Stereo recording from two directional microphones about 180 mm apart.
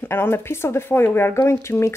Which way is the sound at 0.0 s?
15° left (ahead or behind).